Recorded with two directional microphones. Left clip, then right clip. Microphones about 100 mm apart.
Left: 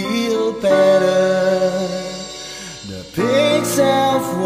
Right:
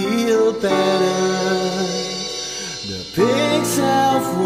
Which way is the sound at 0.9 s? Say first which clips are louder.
Left 4 dB; 20° right (ahead or behind).